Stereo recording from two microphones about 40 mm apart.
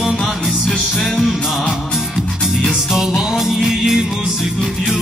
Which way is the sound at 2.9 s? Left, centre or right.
Centre.